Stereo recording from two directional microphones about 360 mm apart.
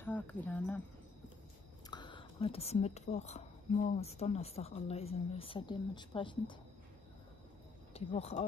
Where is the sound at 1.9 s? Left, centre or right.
Centre.